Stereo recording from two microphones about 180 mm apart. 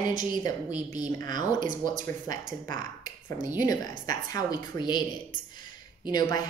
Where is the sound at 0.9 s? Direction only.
20° left (ahead or behind).